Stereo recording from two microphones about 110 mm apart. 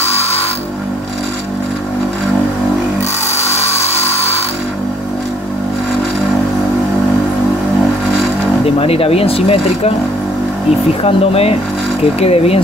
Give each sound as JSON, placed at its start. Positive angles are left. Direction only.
{"t": 0.1, "sound": "music", "side_deg": 65}
{"t": 3.7, "sound": "a sound", "side_deg": 75}
{"t": 8.6, "sound": "speech", "side_deg": 60}
{"t": 11.0, "sound": "speech", "side_deg": 60}